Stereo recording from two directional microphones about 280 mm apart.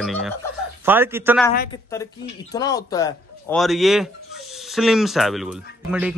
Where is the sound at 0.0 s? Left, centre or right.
Centre.